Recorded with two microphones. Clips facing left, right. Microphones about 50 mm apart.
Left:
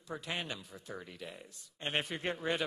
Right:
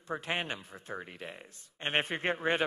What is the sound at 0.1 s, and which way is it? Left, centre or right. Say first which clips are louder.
Speech: right 5 dB; right.